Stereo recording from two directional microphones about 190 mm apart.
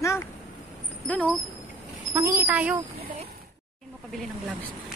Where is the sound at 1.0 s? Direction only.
5° left (ahead or behind).